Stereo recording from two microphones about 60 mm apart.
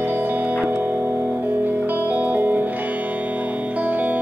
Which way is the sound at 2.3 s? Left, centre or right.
Right.